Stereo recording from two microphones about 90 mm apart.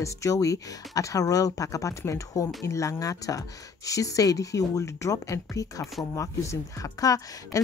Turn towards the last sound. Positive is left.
turn(degrees=40)  # may be behind; listen again after turning